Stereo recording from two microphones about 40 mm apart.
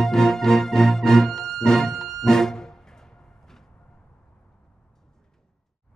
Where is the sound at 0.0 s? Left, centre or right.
Centre.